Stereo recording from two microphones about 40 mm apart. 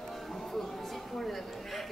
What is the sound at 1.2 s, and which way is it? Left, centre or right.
Speech, centre.